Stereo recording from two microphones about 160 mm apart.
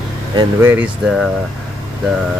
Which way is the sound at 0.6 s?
15° right (ahead or behind).